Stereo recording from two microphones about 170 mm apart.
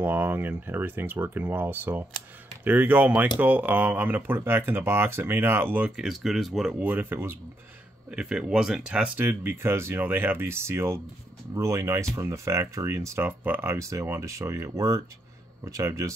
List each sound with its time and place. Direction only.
0.0 s speech: 10° right (ahead or behind)